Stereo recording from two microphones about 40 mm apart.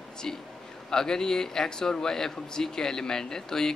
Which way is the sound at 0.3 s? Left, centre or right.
Centre.